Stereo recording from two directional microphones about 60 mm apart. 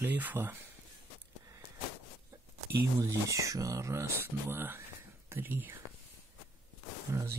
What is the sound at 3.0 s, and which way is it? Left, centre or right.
Speech, right.